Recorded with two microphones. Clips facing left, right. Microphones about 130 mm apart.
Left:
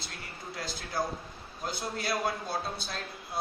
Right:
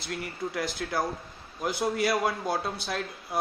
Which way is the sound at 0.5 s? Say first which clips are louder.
Right 3 dB; 70° right (ahead or behind).